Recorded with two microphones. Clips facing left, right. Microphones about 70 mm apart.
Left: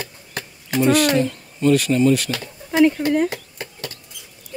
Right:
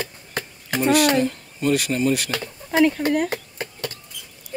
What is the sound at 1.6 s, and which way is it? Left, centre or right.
Speech, centre.